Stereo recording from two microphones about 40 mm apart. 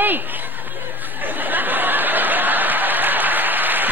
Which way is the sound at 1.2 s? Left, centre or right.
Right.